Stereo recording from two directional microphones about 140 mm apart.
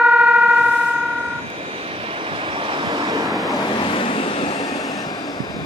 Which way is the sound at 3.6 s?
30° left (ahead or behind).